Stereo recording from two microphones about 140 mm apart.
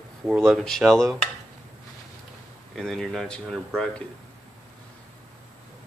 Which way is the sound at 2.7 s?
Centre (ahead or behind).